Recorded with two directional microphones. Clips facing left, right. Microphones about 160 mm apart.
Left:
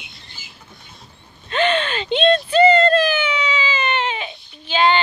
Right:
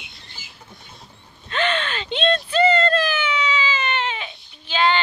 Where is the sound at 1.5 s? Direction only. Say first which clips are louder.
Left 4 dB; 15° left (ahead or behind).